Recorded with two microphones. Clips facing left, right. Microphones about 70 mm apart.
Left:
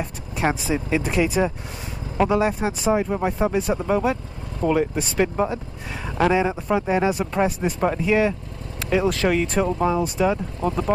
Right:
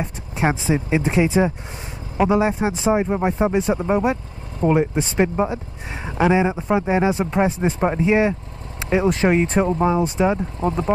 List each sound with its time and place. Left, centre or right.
0.0 s speech: right